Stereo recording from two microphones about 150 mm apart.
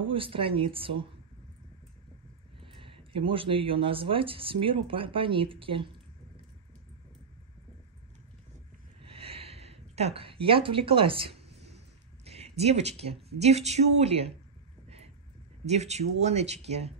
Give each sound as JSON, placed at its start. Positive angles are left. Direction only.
{"t": 0.0, "sound": "speech", "side_deg": -35}
{"t": 2.6, "sound": "speech", "side_deg": -35}
{"t": 9.0, "sound": "a sound", "side_deg": -40}
{"t": 12.3, "sound": "speech", "side_deg": -45}
{"t": 15.6, "sound": "speech", "side_deg": -45}